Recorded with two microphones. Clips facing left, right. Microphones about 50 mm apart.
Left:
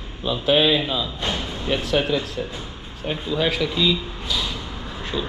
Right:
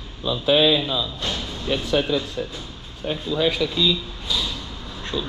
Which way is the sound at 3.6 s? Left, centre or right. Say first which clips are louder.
Even; left.